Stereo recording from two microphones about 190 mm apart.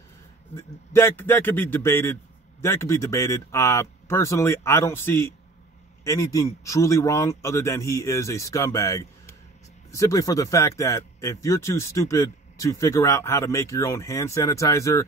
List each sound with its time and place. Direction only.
0.6 s speech: 15° left (ahead or behind)